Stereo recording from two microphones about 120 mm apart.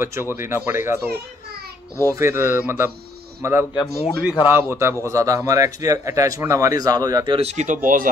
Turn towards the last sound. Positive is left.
turn(degrees=-90)